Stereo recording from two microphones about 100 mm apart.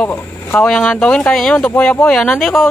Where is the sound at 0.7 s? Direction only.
5° left (ahead or behind).